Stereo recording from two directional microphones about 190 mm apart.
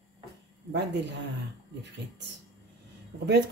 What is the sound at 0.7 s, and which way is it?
Speech, 65° right (ahead or behind).